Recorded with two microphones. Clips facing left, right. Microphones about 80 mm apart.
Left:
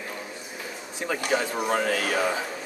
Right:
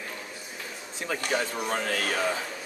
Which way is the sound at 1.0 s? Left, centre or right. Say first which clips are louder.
Left 3 dB; centre.